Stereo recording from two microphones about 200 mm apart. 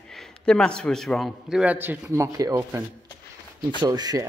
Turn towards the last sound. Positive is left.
turn(degrees=-20)  # may be behind; listen again after turning